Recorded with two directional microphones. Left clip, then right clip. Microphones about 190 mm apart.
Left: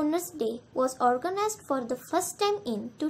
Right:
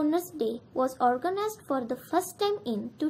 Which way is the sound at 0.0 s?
10° left (ahead or behind).